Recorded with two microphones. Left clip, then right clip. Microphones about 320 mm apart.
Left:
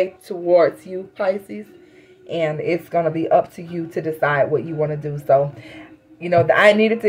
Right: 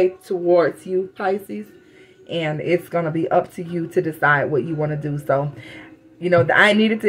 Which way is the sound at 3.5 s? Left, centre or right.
Left.